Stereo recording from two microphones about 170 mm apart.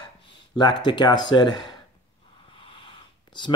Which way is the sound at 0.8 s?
25° left (ahead or behind).